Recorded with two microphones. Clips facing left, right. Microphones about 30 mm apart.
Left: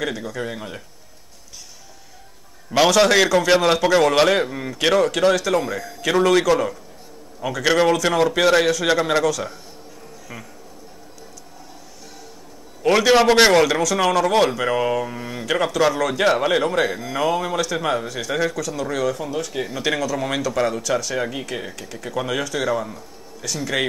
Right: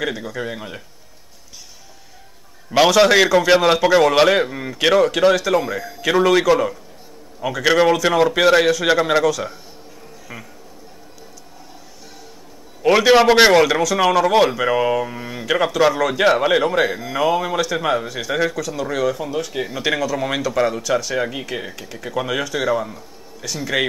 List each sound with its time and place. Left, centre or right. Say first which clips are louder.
0.0 s a man's voice: right 1 dB; centre
2.7 s a man's voice: right 2 dB; centre
12.8 s a man's voice: right 2 dB; centre